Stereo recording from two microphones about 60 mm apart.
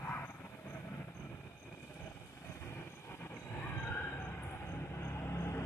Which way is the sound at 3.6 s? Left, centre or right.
Left.